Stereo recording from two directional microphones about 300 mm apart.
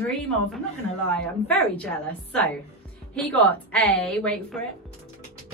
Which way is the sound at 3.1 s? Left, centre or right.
Centre.